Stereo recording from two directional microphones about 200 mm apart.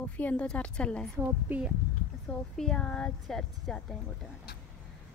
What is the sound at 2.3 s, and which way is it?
A woman's voice, 5° left (ahead or behind).